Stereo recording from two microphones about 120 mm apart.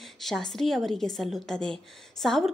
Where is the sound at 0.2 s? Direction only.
5° left (ahead or behind).